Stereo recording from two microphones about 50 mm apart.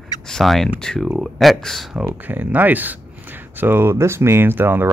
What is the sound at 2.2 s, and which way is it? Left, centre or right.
Speech, right.